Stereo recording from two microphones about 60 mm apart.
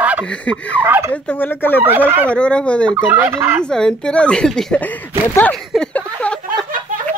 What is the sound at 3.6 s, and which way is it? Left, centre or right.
Speech, centre.